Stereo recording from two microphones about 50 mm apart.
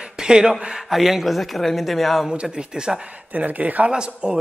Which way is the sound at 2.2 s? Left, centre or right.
Centre.